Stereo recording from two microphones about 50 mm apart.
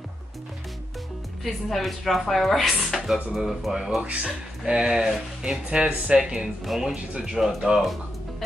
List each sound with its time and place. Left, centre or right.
1.4 s a woman's voice: centre
4.0 s speech: right
4.6 s a woman's voice: centre